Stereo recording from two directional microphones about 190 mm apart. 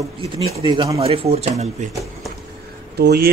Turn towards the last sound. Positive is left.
turn(degrees=-55)  # may be behind; listen again after turning